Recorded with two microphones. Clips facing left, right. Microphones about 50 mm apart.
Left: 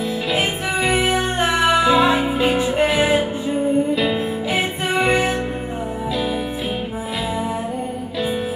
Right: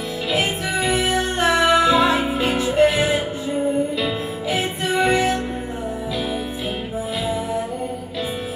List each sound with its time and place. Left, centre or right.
0.4 s music: centre
4.8 s music: left